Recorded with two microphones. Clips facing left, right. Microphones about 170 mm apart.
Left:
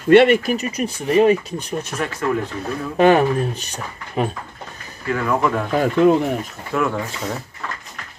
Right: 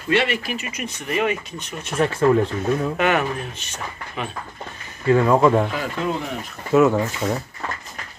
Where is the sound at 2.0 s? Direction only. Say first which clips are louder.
Right 10 dB; 30° right (ahead or behind).